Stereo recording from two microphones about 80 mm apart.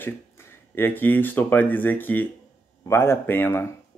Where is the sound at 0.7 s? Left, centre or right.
Left.